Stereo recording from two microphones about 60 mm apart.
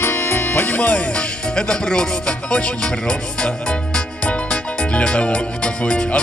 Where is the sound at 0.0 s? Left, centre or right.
Left.